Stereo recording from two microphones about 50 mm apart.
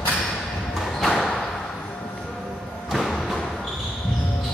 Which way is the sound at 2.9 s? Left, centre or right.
Centre.